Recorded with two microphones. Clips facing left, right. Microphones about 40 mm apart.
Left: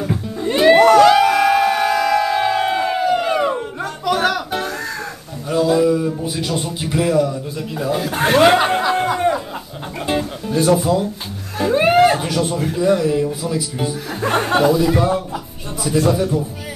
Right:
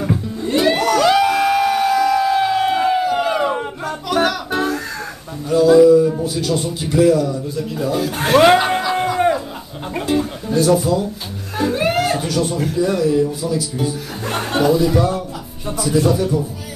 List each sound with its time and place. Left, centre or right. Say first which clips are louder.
0.5 s music: left 6 dB; left
1.0 s music: left 2 dB; centre
5.5 s a sound: right 6 dB; centre
6.2 s a man's voice: right 2 dB; left; by 8.8 s centre
10.5 s speech: even; centre
11.7 s a sound: left 7 dB; left
12.6 s a man's voice: left 2 dB; centre
14.6 s a man's voice: right 2 dB; centre
14.9 s a man's voice: left 1 dB; left